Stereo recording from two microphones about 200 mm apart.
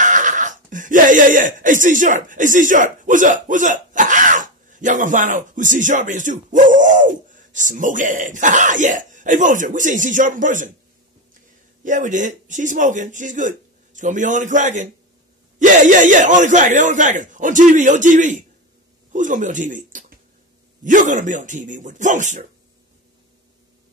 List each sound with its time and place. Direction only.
0.0 s speech: 40° right (ahead or behind)
11.8 s speech: 40° right (ahead or behind)